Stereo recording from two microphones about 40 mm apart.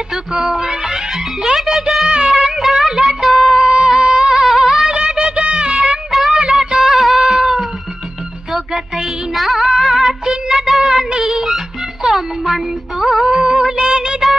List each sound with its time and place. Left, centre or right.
0.5 s speech: centre
2.0 s music of bollywood: right
2.3 s music: centre
3.2 s a sound: centre
3.5 s music: centre
5.1 s music of bollywood: right
5.7 s music: right
7.0 s music: centre
7.3 s cat: centre
8.5 s music: centre
12.1 s music: centre
13.3 s music: centre